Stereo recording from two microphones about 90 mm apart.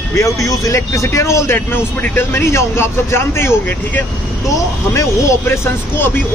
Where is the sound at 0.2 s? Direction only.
35° left (ahead or behind).